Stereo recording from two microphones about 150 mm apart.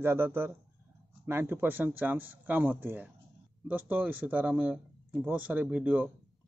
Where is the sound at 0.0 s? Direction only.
15° right (ahead or behind).